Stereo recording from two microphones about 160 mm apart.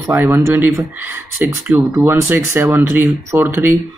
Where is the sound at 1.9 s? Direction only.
15° right (ahead or behind).